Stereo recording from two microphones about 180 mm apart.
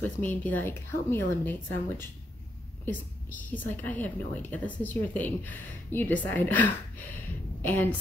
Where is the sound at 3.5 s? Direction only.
10° left (ahead or behind).